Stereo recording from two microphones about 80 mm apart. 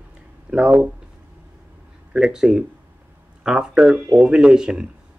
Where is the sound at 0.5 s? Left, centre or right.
Centre.